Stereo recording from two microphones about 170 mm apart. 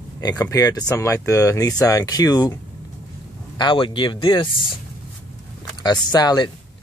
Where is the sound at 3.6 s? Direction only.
30° left (ahead or behind).